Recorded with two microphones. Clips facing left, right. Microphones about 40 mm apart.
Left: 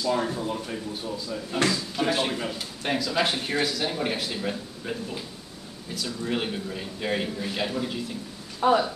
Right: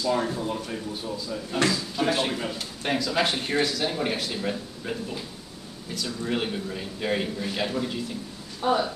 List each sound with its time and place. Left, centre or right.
0.0 s speech: centre
8.6 s speech: left